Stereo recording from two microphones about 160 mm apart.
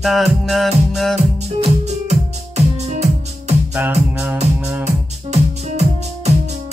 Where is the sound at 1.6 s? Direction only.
45° right (ahead or behind).